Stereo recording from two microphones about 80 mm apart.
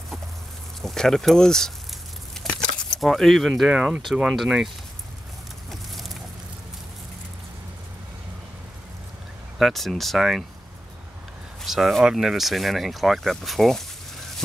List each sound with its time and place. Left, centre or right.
0.8 s speech: centre
2.3 s keys jangling: centre
4.0 s speech: centre
5.7 s a sound: centre
9.6 s speech: centre
11.6 s speech: centre